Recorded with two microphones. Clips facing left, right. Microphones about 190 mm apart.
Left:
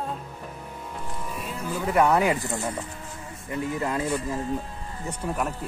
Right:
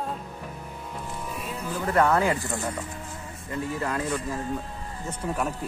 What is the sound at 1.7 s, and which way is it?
Speech, 15° left (ahead or behind).